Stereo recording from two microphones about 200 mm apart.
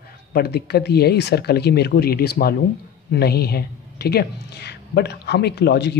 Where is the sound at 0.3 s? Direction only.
55° left (ahead or behind).